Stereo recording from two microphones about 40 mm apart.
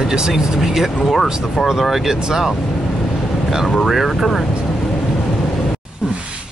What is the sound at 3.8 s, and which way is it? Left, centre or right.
Speech, centre.